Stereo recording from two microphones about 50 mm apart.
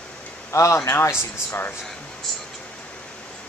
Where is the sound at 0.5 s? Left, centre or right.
Left.